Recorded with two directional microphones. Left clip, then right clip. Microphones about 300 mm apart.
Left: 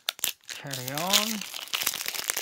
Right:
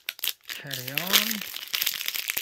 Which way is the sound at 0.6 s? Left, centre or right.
Centre.